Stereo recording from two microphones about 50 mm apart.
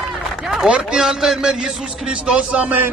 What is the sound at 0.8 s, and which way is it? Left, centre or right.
A man's voice, centre.